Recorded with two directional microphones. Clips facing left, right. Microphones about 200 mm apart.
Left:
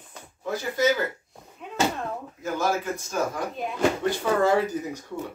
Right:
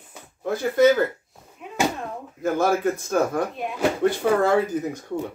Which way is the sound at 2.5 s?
55° right (ahead or behind).